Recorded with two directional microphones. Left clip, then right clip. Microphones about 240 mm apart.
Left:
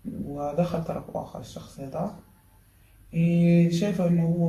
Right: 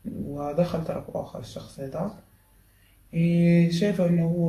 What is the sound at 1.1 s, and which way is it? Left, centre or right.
Speech, centre.